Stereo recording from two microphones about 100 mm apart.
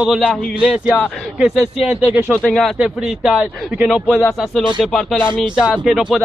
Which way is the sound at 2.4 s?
5° left (ahead or behind).